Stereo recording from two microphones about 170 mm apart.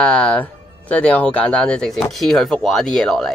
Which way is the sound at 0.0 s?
5° left (ahead or behind).